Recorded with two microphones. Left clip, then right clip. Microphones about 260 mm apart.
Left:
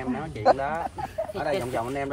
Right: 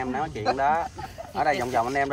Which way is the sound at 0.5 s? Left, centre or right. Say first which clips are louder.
Right 5 dB; right.